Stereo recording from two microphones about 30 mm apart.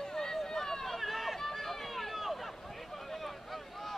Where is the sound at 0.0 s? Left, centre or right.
Centre.